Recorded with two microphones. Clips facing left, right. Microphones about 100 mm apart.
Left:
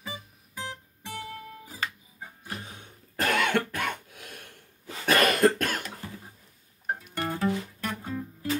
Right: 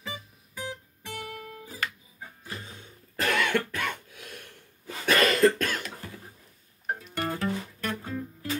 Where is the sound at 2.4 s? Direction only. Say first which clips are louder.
Left 2 dB; 65° left (ahead or behind).